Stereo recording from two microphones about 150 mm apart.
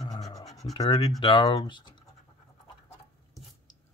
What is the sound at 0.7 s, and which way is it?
Speech, 25° left (ahead or behind).